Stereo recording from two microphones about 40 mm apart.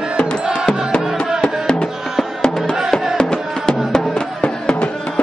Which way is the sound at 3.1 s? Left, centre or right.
Centre.